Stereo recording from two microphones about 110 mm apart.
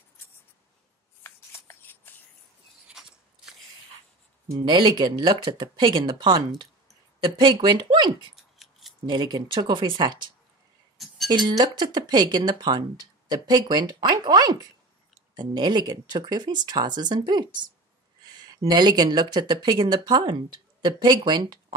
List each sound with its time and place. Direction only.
1.2 s a sound: 20° left (ahead or behind)
2.9 s biting: 5° right (ahead or behind)
4.6 s speech: 45° right (ahead or behind)
8.4 s scissors: centre (ahead or behind)
9.1 s speech: 45° right (ahead or behind)
11.2 s speech: 40° right (ahead or behind)
18.2 s a sound: 40° right (ahead or behind)
18.7 s speech: 40° right (ahead or behind)